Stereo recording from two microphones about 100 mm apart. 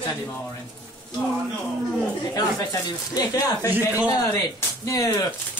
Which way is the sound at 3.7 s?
20° right (ahead or behind).